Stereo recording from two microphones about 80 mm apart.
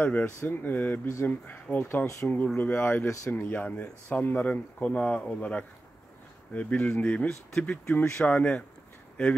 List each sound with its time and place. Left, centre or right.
0.0 s speech: centre